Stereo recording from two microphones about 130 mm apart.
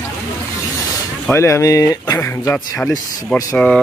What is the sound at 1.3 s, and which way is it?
Speech, 20° left (ahead or behind).